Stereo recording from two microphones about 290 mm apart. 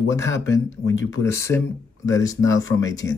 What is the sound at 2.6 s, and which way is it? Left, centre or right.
Speech, left.